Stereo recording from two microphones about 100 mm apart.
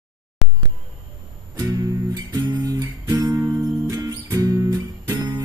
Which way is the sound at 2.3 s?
40° right (ahead or behind).